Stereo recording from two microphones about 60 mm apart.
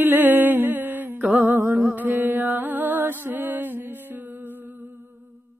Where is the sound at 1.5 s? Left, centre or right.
Right.